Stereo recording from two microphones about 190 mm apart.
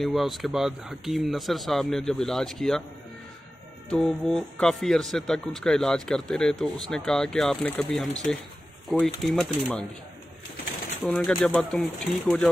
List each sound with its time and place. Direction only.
0.0 s speech: centre (ahead or behind)
3.9 s speech: 5° left (ahead or behind)
11.0 s speech: 5° left (ahead or behind)